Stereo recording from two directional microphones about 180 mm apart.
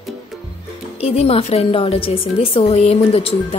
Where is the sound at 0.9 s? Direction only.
35° left (ahead or behind).